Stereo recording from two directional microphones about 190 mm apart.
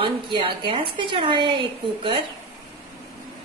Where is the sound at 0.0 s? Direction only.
25° right (ahead or behind).